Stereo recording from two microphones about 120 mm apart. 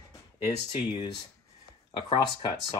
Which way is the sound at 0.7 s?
40° left (ahead or behind).